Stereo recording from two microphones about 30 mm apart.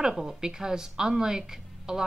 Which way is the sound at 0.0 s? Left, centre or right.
Centre.